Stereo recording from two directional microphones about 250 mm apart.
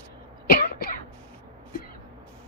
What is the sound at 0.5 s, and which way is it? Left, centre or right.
Cough, left.